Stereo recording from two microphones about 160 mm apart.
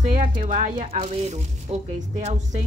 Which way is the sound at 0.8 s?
40° right (ahead or behind).